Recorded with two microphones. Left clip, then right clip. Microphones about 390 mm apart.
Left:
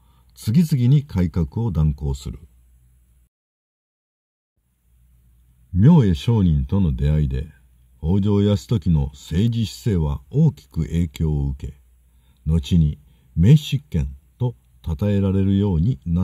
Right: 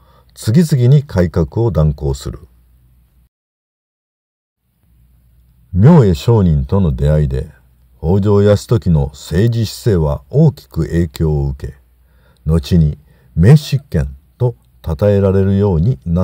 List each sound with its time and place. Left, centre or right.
0.1 s speech: centre
5.8 s speech: centre